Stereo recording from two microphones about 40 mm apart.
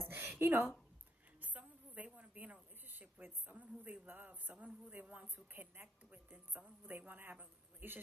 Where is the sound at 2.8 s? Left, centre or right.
Right.